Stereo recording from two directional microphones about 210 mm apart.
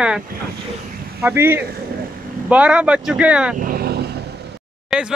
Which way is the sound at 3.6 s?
40° right (ahead or behind).